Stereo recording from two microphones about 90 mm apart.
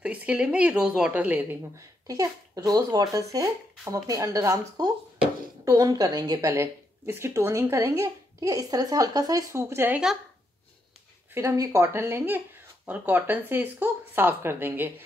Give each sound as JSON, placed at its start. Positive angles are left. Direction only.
{"t": 0.0, "sound": "a woman's voice", "side_deg": -15}
{"t": 1.8, "sound": "speech", "side_deg": -40}
{"t": 6.5, "sound": "speech", "side_deg": -30}
{"t": 9.5, "sound": "speech", "side_deg": -30}
{"t": 11.5, "sound": "speech", "side_deg": -35}